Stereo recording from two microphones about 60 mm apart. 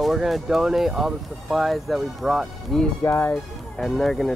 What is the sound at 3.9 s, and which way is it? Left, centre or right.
Speech, centre.